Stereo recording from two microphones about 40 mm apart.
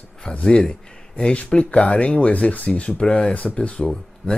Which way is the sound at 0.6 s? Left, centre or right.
Centre.